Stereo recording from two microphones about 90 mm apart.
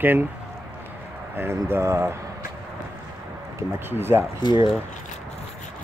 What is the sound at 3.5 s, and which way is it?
Speech, 25° right (ahead or behind).